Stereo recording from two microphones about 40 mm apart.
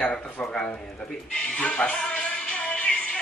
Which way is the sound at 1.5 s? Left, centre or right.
Left.